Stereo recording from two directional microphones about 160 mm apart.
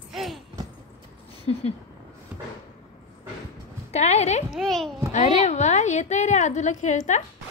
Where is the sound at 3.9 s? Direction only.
45° left (ahead or behind).